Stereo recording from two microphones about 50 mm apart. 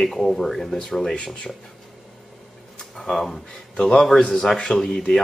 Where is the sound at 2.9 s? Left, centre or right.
Centre.